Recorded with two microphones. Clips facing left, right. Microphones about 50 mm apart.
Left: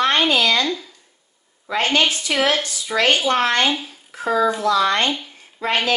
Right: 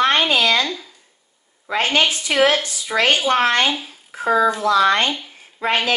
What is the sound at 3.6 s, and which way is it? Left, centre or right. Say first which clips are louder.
A child's voice: even; centre.